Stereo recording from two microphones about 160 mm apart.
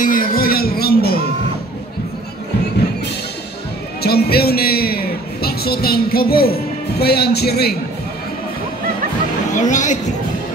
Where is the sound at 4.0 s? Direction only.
80° left.